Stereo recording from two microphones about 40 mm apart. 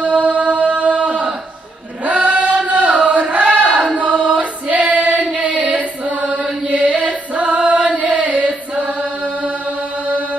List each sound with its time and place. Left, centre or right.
0.0 s chant: right
2.0 s music: right
3.4 s choir: right
5.4 s mantra: right
6.7 s chant: right